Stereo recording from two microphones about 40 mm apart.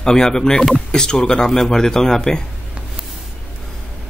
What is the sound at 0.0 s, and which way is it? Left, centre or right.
Speech, centre.